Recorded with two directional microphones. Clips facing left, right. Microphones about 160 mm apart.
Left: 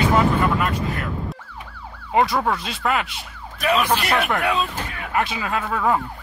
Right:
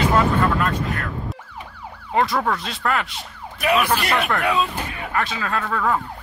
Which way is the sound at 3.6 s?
10° right (ahead or behind).